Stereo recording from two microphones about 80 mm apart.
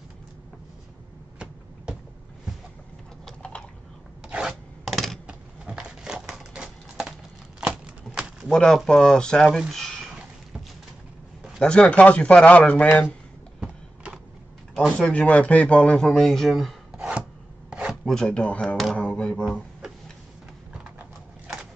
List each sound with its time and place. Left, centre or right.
1.9 s a sound: centre
3.3 s typing: centre
4.3 s filing: centre
5.2 s a sound: centre
8.5 s speech: centre
9.5 s a sound: centre
11.6 s speech: centre
13.6 s a sound: centre
15.0 s speech: centre
16.9 s filing: centre
17.6 s chopping: centre
18.0 s speech: centre